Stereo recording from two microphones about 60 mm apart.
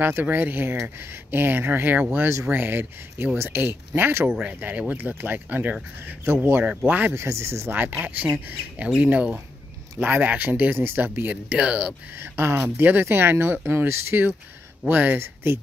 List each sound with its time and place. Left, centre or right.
0.0 s speech: right
4.6 s speech: right
6.2 s speech: right
6.6 s speech: right
7.2 s speech: right
7.7 s speech: right
11.2 s speech: right
12.2 s speech: right
14.9 s speech: right
15.1 s speech: right